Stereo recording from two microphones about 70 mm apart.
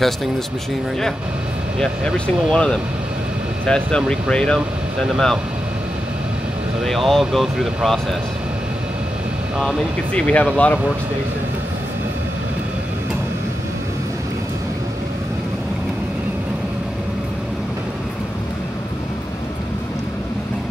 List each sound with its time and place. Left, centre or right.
1.8 s speech: centre
5.0 s speech: centre
6.8 s speech: centre
10.1 s speech: centre